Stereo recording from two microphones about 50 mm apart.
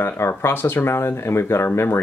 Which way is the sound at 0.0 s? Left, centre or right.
Left.